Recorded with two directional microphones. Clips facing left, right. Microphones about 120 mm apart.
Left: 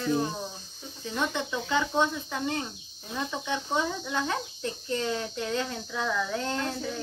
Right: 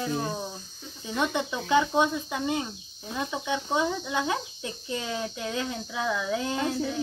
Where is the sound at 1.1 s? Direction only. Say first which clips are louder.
Right 2 dB; 15° right (ahead or behind).